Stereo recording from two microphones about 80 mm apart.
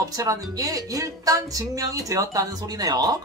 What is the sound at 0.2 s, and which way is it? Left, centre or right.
Speech, right.